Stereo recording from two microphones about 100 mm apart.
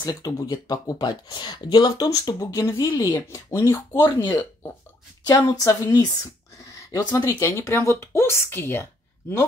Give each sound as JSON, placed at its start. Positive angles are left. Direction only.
{"t": 0.0, "sound": "speech", "side_deg": 40}
{"t": 2.0, "sound": "speech", "side_deg": 35}
{"t": 4.2, "sound": "speech", "side_deg": 45}
{"t": 5.5, "sound": "speech", "side_deg": 35}